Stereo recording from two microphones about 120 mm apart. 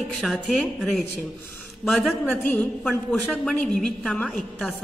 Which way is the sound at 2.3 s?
15° left (ahead or behind).